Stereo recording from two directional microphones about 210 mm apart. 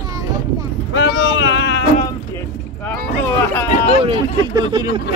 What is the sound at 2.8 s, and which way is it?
Speech, 10° left (ahead or behind).